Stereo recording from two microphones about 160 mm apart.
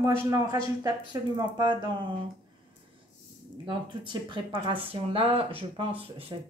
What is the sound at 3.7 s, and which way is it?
Speech, 30° right (ahead or behind).